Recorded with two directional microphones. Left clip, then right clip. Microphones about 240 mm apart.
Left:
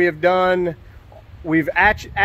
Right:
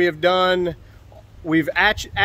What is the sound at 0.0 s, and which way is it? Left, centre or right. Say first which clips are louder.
A man's voice: left 1 dB; centre.